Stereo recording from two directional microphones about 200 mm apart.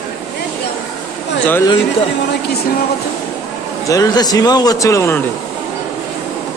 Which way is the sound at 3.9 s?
20° left (ahead or behind).